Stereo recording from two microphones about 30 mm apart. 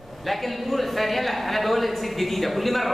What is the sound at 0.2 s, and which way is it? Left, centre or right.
A man's voice, centre.